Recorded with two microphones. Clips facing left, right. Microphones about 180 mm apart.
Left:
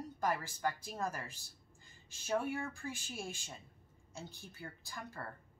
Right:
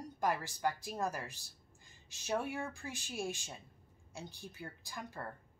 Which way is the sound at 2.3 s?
15° right (ahead or behind).